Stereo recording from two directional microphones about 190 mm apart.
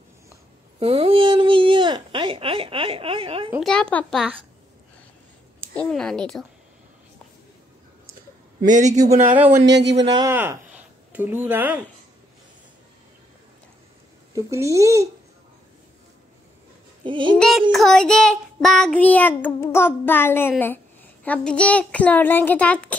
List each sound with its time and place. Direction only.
0.7 s a sound: 30° right (ahead or behind)
3.5 s speech: 5° left (ahead or behind)
5.8 s speech: 5° left (ahead or behind)
8.5 s a man's voice: 40° right (ahead or behind)
9.2 s speech: 10° right (ahead or behind)
9.7 s speech: 65° right (ahead or behind)
10.0 s speech: 25° right (ahead or behind)
10.3 s speech: 10° right (ahead or behind)
14.3 s speech: 15° right (ahead or behind)
17.0 s speech: 25° right (ahead or behind)
17.4 s child singing: centre (ahead or behind)